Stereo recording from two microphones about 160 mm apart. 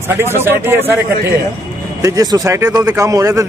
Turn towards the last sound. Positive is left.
turn(degrees=-20)  # may be behind; listen again after turning